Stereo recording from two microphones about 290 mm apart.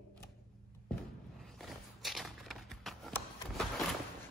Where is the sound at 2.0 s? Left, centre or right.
Centre.